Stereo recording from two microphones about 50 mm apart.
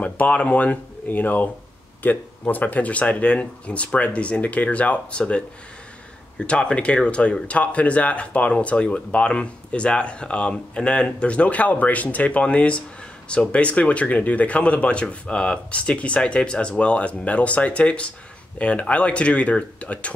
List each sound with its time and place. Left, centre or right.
0.0 s speech: left
6.4 s speech: left